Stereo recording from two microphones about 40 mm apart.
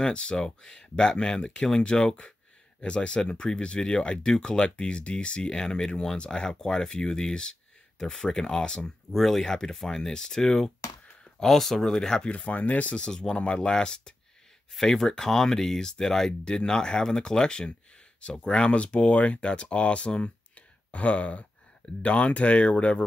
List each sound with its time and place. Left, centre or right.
0.0 s speech: left
9.2 s speech: centre
12.4 s speech: left
12.9 s speech: centre
14.7 s speech: centre; by 23.0 s left